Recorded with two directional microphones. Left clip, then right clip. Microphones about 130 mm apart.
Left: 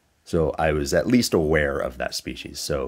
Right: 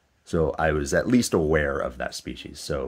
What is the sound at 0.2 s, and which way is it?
Speech, 15° left (ahead or behind).